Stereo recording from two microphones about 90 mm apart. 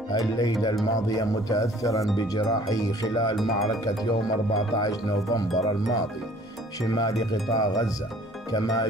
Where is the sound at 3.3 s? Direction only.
Centre (ahead or behind).